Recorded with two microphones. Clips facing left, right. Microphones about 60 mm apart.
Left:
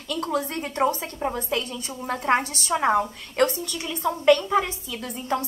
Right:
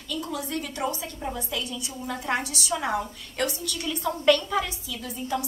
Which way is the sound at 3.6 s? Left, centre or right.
Left.